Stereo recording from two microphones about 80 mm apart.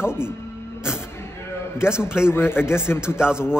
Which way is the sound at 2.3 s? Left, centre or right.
Left.